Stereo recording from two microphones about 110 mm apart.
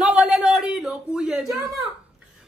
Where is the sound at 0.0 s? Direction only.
10° right (ahead or behind).